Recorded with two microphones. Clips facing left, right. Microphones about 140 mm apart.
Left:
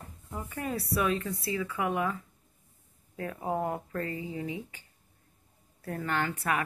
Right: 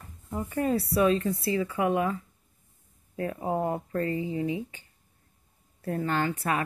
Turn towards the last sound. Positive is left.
turn(degrees=-30)  # may be behind; listen again after turning